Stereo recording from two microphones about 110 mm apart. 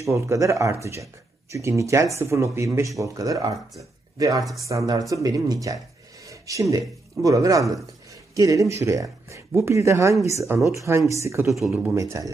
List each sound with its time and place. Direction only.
0.0 s speech: 25° right (ahead or behind)
6.2 s a sound: 30° right (ahead or behind)
7.2 s speech: 30° right (ahead or behind)
12.0 s speech: 30° right (ahead or behind)